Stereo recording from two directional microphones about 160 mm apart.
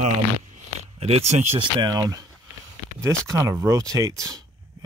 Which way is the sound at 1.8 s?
25° right (ahead or behind).